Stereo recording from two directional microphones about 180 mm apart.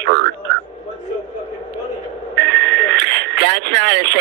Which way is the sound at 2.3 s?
75° right (ahead or behind).